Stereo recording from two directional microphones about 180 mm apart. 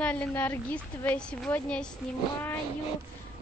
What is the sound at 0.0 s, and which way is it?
A woman's voice, 10° left (ahead or behind).